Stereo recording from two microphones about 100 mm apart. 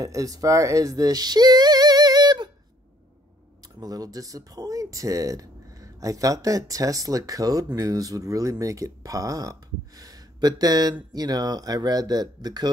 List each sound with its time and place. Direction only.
0.0 s speech: 35° right (ahead or behind)
3.8 s speech: 40° right (ahead or behind)